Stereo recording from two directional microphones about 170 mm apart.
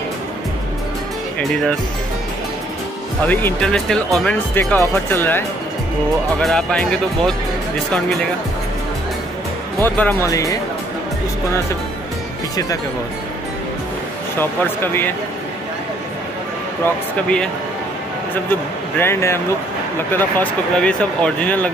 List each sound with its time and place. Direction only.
1.4 s speech: centre (ahead or behind)
3.3 s speech: 5° left (ahead or behind)
6.4 s speech: 5° left (ahead or behind)
9.8 s speech: 10° left (ahead or behind)
14.4 s speech: 15° left (ahead or behind)
16.8 s speech: 5° left (ahead or behind)